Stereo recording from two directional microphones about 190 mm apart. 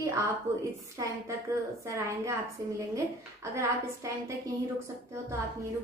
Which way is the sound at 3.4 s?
15° right (ahead or behind).